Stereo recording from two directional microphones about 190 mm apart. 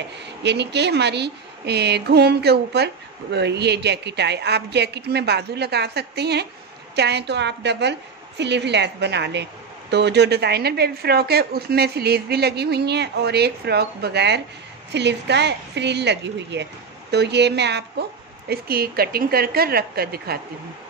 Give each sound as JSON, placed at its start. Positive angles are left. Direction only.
{"t": 0.4, "sound": "a woman's voice", "side_deg": -65}